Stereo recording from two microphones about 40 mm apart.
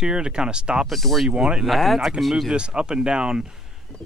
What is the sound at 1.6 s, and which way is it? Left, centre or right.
Speech, centre.